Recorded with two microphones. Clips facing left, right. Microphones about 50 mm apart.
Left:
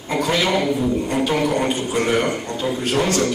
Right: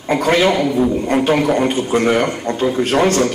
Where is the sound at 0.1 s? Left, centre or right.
Right.